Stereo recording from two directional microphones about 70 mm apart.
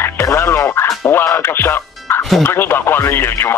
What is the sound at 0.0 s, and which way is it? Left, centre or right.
Music, left.